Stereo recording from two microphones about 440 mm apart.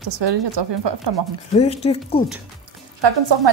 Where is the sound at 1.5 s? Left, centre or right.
Centre.